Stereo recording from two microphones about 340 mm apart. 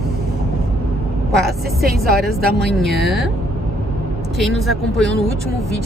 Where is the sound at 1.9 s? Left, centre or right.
Right.